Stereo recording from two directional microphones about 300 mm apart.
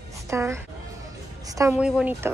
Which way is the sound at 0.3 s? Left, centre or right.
Centre.